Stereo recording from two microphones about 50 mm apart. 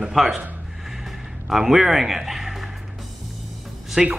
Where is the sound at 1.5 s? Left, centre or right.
Centre.